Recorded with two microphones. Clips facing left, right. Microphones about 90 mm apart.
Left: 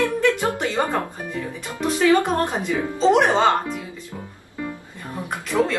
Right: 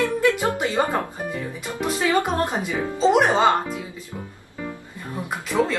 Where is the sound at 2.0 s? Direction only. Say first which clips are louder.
Left 4 dB; 10° right (ahead or behind).